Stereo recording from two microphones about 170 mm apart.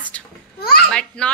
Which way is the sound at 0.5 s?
65° left (ahead or behind).